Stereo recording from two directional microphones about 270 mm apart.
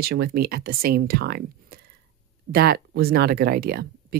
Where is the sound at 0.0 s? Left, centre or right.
Right.